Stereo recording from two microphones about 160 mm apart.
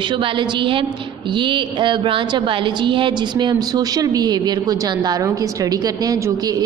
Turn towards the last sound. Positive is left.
turn(degrees=-20)  # may be behind; listen again after turning